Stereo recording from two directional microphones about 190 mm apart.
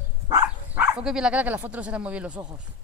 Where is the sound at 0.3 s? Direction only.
10° right (ahead or behind).